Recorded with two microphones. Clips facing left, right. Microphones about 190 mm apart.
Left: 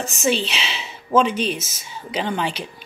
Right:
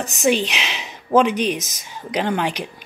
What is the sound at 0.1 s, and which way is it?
Speech, 15° right (ahead or behind).